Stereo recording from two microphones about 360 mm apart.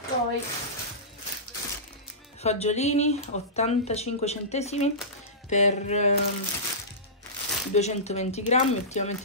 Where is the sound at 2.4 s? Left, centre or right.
Centre.